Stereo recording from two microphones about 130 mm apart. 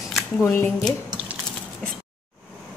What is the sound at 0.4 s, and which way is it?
Speech, 20° left (ahead or behind).